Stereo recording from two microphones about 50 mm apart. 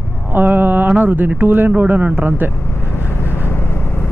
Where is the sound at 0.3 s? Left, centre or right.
Right.